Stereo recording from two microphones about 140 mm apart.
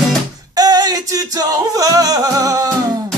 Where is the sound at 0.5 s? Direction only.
25° right (ahead or behind).